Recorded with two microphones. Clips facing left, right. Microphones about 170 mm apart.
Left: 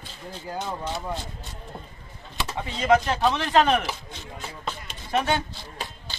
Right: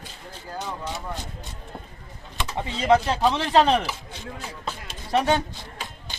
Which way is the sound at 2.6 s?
30° right (ahead or behind).